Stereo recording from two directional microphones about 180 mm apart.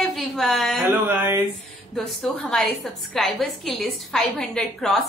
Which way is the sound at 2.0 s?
5° left (ahead or behind).